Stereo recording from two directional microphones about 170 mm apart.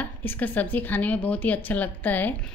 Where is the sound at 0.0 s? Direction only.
10° left (ahead or behind).